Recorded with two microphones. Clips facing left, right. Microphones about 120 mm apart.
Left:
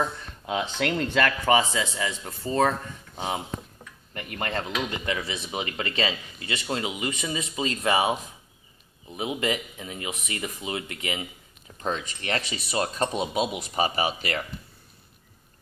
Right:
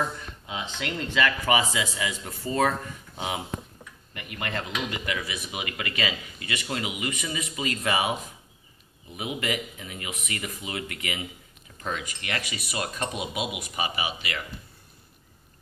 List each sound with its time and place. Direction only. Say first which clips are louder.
0.5 s speech: left 7 dB; 55° left (ahead or behind)
1.4 s speech: left 2 dB; 30° left (ahead or behind)
4.1 s speech: left 3 dB; 40° left (ahead or behind)